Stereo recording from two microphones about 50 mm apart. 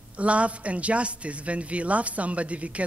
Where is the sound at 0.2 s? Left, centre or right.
Right.